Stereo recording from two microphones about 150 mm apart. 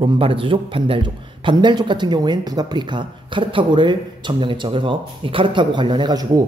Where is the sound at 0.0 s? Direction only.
35° right (ahead or behind).